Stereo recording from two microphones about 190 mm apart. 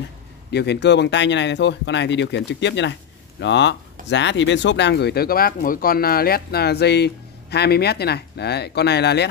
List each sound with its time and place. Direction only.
0.5 s speech: 60° left (ahead or behind)